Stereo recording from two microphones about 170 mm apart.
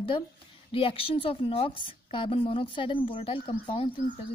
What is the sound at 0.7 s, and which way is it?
A woman's voice, 30° left (ahead or behind).